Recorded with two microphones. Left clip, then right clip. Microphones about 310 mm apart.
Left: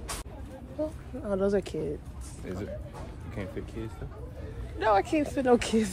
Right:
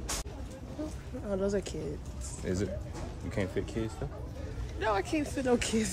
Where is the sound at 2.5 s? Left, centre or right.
Right.